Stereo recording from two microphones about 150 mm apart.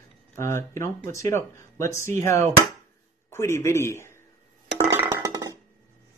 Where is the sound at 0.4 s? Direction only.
15° left (ahead or behind).